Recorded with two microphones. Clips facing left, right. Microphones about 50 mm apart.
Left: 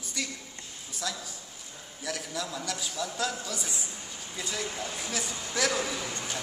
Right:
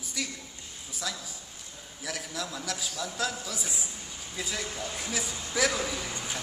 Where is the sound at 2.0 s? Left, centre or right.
Centre.